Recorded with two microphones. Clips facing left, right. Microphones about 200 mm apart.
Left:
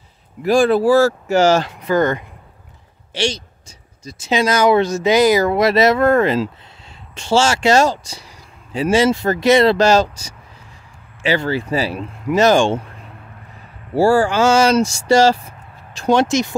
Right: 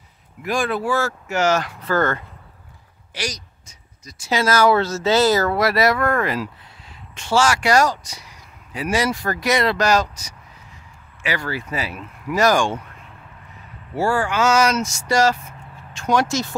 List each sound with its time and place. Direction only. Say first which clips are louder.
0.4 s speech: left 9 dB; 30° left (ahead or behind)
1.8 s speech: left 4 dB; 15° left (ahead or behind)
3.2 s speech: left 8 dB; 30° left (ahead or behind)
13.9 s speech: left 7 dB; 30° left (ahead or behind)